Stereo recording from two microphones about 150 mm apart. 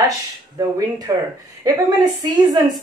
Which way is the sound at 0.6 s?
25° right (ahead or behind).